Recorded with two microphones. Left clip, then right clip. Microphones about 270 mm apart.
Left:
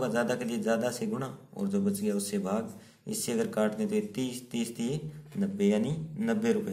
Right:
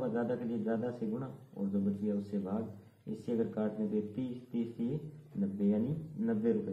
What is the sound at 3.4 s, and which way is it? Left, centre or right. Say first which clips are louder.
Speech: left 7 dB; left.